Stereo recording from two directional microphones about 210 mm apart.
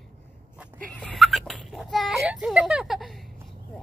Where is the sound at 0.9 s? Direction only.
5° left (ahead or behind).